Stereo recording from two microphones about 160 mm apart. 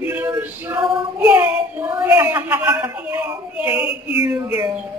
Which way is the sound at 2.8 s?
10° right (ahead or behind).